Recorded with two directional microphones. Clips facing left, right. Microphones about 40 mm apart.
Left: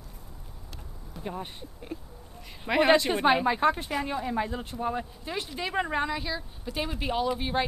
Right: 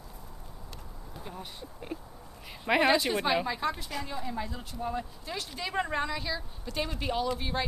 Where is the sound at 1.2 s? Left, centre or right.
Left.